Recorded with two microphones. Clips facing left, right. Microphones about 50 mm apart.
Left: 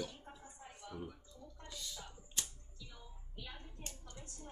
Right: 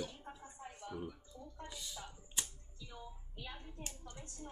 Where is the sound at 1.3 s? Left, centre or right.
Centre.